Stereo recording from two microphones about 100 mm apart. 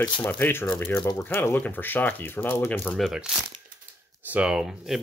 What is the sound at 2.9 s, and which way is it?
Speech, centre (ahead or behind).